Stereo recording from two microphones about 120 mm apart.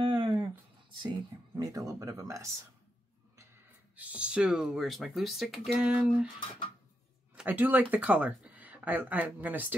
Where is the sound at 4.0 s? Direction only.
10° right (ahead or behind).